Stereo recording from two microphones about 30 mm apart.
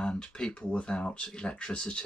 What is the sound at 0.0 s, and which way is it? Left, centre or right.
Speech, left.